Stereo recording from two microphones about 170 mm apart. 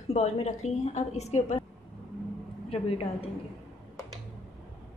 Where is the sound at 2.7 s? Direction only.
35° left (ahead or behind).